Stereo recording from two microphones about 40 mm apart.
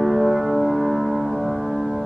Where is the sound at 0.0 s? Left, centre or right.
Centre.